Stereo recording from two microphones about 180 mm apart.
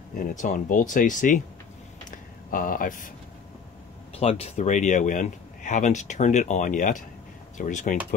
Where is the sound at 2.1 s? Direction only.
50° left (ahead or behind).